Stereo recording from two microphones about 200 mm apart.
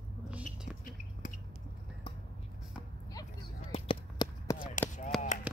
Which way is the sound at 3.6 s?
25° left (ahead or behind).